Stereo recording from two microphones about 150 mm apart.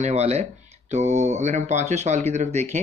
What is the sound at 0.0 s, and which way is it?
Speech, 45° right (ahead or behind).